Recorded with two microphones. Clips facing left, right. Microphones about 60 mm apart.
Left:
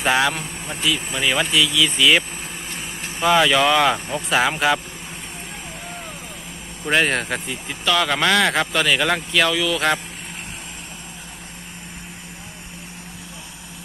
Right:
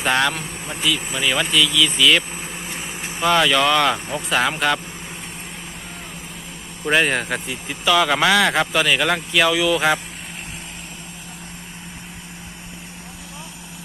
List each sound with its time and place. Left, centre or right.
0.0 s speech: centre
6.8 s speech: centre